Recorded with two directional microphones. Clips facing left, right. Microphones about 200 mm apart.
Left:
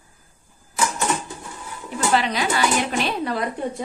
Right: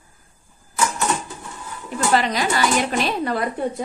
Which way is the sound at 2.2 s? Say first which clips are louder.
Right 1 dB; 40° right (ahead or behind).